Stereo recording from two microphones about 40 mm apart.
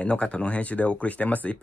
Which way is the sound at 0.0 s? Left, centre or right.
Left.